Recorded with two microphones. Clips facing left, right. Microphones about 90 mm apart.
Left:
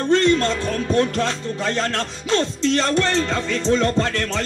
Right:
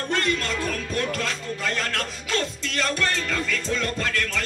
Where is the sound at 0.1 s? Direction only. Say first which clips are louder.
Left 9 dB; 30° left (ahead or behind).